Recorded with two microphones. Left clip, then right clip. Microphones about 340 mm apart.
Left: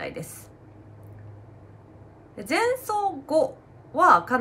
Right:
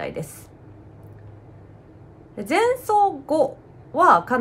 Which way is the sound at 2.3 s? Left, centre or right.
Centre.